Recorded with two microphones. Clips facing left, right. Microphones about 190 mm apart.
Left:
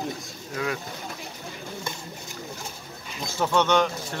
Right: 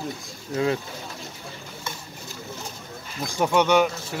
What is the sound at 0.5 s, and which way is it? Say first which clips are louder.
Speech: right 6 dB; 25° right (ahead or behind).